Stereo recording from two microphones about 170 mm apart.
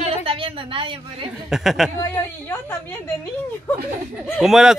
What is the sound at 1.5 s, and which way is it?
Speech, centre (ahead or behind).